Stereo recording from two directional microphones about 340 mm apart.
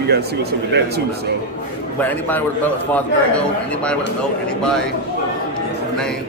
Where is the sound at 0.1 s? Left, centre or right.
Right.